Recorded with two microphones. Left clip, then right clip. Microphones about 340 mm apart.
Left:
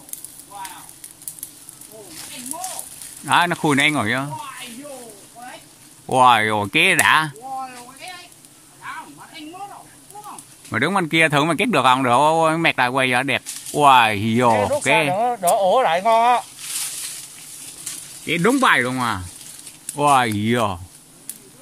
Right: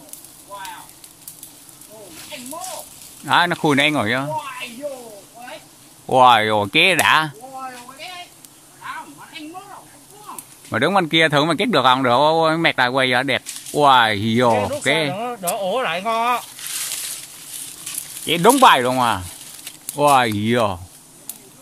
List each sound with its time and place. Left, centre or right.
3.3 s speech: centre
6.0 s speech: centre
10.7 s speech: centre
15.7 s speech: centre
18.2 s speech: centre